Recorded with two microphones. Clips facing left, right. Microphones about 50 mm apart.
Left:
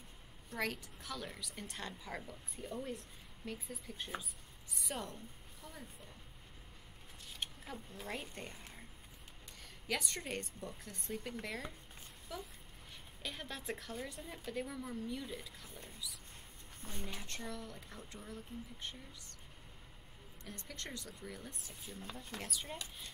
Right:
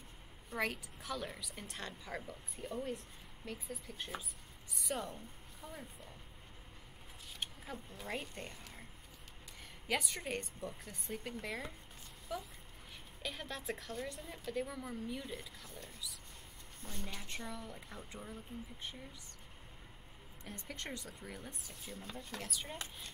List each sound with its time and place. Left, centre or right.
0.5 s a woman's voice: centre
7.3 s speech: centre
9.8 s a woman's voice: centre
17.2 s speech: centre
20.4 s speech: right
21.6 s a woman's voice: centre